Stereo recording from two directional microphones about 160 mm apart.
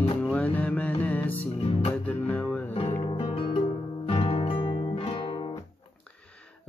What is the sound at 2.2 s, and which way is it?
Music, 10° left (ahead or behind).